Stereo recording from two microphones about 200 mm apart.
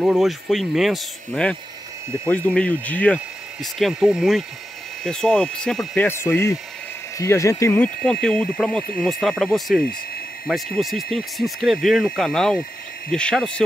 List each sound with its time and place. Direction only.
0.0 s speech: centre (ahead or behind)